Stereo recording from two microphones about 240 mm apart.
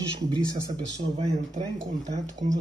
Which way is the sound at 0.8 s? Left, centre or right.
Centre.